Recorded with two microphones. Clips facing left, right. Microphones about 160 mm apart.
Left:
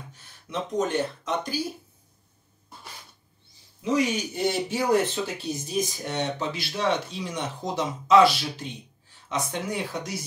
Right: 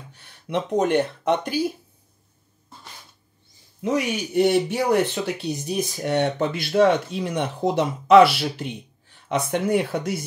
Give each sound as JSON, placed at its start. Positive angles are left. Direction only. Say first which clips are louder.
{"t": 0.1, "sound": "speech", "louder": "right 8 dB", "side_deg": -65}
{"t": 3.8, "sound": "speech", "louder": "right 1 dB", "side_deg": -60}